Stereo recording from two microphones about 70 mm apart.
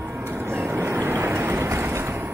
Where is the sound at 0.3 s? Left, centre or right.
Right.